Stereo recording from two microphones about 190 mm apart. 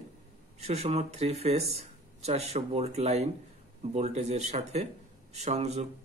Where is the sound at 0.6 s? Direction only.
35° right (ahead or behind).